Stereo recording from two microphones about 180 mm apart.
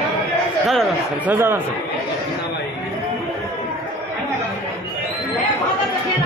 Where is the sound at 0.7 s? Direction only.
Centre (ahead or behind).